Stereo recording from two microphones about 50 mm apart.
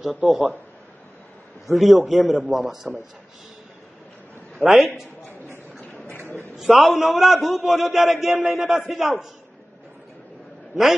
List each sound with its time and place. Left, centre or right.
0.0 s a man's voice: centre
1.7 s a man's voice: centre
4.6 s a man's voice: centre
6.0 s a sound: left
6.5 s a man's voice: centre